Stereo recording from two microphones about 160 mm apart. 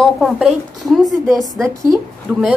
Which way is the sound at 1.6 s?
20° right (ahead or behind).